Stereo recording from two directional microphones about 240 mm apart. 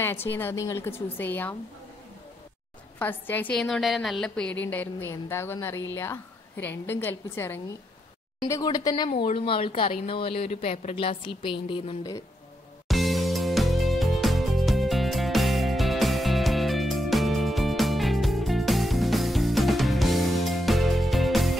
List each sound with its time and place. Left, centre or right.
0.0 s a woman's voice: centre
3.0 s a woman's voice: centre
6.9 s a woman's voice: centre
12.8 s music: centre